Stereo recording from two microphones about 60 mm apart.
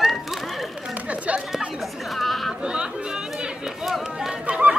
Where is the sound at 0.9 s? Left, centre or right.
Right.